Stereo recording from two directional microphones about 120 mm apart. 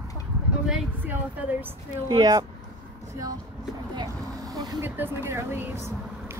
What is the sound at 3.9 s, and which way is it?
Vehicle, 35° right (ahead or behind).